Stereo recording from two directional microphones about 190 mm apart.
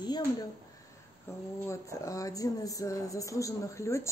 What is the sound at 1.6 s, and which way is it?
Speech, 15° left (ahead or behind).